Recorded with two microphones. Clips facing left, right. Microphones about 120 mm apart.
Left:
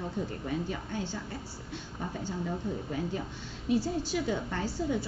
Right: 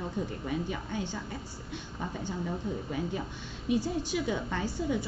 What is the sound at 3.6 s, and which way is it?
A woman's voice, 15° right (ahead or behind).